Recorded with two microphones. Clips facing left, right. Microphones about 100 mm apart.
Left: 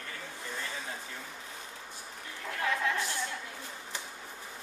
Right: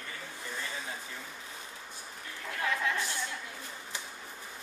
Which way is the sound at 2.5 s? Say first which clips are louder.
Left 1 dB; centre (ahead or behind).